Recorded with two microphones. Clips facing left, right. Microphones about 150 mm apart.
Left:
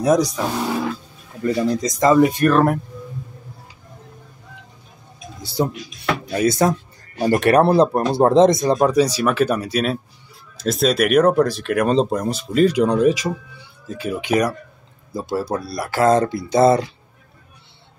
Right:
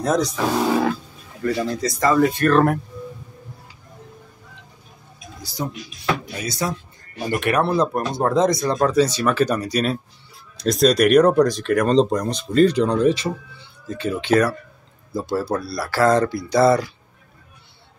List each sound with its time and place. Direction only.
0.0 s speech: 10° left (ahead or behind)
1.4 s speech: 20° left (ahead or behind)
5.4 s speech: 30° left (ahead or behind)
6.3 s speech: 50° left (ahead or behind)
7.2 s speech: 35° left (ahead or behind)